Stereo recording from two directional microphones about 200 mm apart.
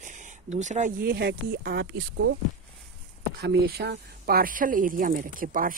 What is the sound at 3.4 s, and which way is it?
Speech, 55° right (ahead or behind).